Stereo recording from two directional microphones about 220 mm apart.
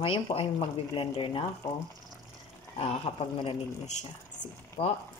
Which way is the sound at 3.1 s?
25° left (ahead or behind).